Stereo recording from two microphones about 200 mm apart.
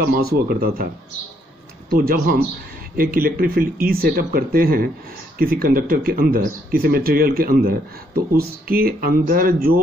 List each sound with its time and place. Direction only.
0.0 s speech: 50° right (ahead or behind)
1.9 s speech: 45° right (ahead or behind)